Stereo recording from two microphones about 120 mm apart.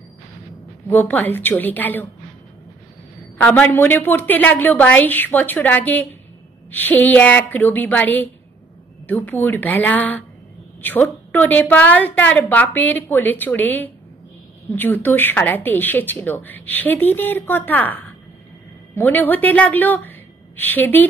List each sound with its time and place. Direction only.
0.8 s a woman's voice: 15° left (ahead or behind)
3.3 s a woman's voice: 10° left (ahead or behind)